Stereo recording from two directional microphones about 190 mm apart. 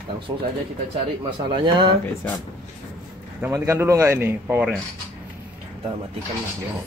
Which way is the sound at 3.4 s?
15° right (ahead or behind).